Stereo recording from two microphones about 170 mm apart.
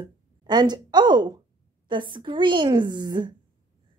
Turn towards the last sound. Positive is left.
turn(degrees=-25)  # may be behind; listen again after turning